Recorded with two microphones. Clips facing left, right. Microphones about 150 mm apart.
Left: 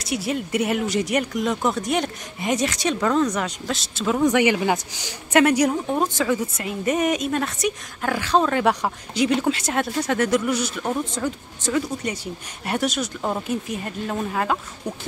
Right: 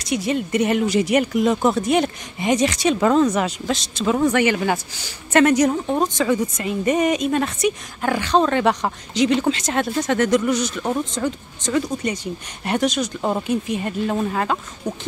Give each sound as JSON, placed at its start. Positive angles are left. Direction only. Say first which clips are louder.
{"t": 0.0, "sound": "speech", "louder": "right 3 dB", "side_deg": 5}
{"t": 4.3, "sound": "speech", "louder": "even", "side_deg": 15}
{"t": 13.2, "sound": "speech", "louder": "right 4 dB", "side_deg": -10}